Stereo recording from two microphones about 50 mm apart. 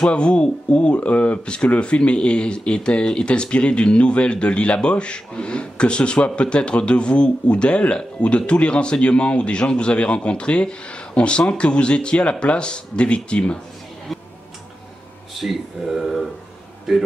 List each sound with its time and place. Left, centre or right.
0.1 s speech: left
15.3 s speech: centre